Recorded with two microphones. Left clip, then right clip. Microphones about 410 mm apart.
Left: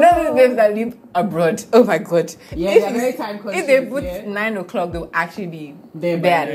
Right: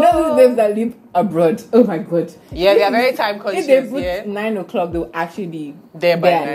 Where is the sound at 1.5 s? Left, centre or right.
Left.